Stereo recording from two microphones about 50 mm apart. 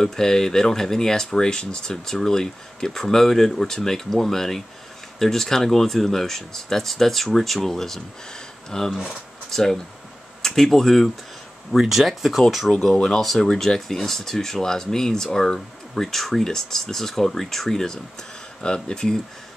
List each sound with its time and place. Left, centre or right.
0.0 s speech: centre
11.7 s speech: centre